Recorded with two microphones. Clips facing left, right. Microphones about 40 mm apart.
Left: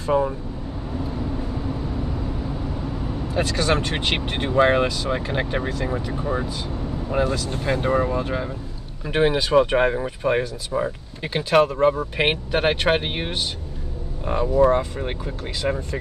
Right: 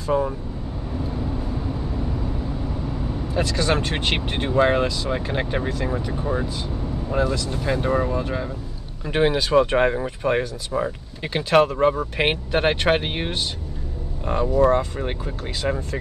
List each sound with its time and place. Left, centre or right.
0.1 s speech: centre
3.6 s speech: centre
4.8 s speech: left
5.2 s speech: centre
7.2 s speech: left
7.6 s speech: centre
14.6 s speech: centre